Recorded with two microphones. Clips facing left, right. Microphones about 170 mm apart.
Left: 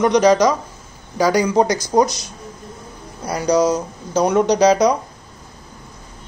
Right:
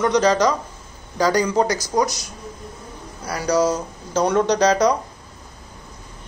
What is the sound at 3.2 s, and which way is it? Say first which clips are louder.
Speech: left 3 dB; 20° left (ahead or behind).